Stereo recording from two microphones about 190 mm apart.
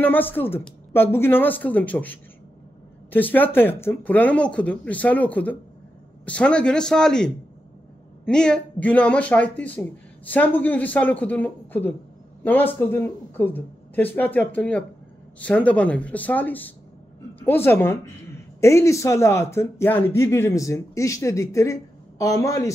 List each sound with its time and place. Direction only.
0.0 s speech: 10° left (ahead or behind)